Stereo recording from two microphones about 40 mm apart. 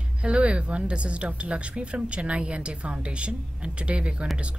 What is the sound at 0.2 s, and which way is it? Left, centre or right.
Speech, right.